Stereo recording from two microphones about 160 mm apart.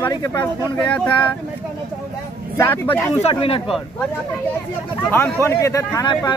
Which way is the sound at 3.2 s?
35° left (ahead or behind).